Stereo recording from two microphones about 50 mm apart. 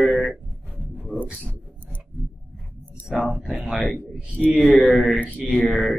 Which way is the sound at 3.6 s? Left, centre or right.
Centre.